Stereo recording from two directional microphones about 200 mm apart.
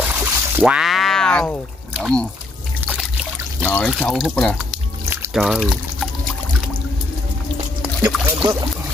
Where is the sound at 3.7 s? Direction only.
Centre (ahead or behind).